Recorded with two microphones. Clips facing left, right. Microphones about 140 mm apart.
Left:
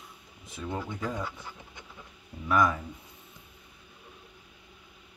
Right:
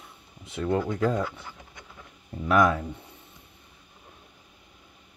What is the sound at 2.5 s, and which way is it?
Speech, 70° right (ahead or behind).